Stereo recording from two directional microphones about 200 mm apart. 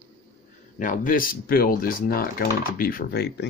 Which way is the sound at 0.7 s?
40° left (ahead or behind).